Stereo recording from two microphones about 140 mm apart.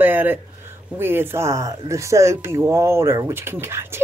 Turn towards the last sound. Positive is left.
turn(degrees=-15)  # may be behind; listen again after turning